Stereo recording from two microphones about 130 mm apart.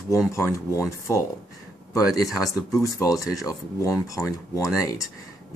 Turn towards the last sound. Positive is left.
turn(degrees=25)  # may be behind; listen again after turning